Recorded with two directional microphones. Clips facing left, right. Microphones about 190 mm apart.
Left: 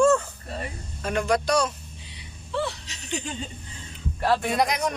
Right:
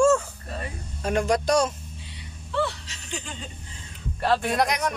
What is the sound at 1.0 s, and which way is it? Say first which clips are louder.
Speech: right 1 dB; 40° right (ahead or behind).